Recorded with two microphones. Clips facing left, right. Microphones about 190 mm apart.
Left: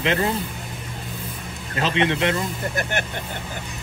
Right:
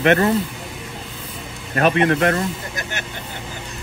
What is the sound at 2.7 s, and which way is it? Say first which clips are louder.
Speech: left 4 dB; 55° left (ahead or behind).